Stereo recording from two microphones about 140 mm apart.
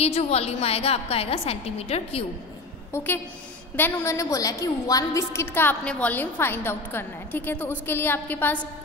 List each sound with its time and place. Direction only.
0.0 s a woman's voice: 45° left (ahead or behind)
2.9 s a woman's voice: 15° left (ahead or behind)